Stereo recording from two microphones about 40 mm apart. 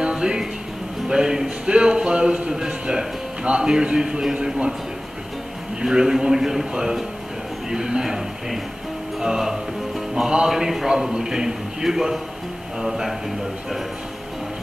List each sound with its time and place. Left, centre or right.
0.0 s music: right
1.0 s speech: centre
2.6 s speech: centre
3.5 s speech: right
5.8 s a man's voice: centre
9.2 s a man's voice: centre